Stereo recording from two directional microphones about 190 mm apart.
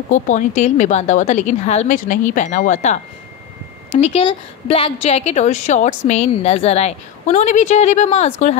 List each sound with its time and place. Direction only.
0.1 s a woman's voice: 40° left (ahead or behind)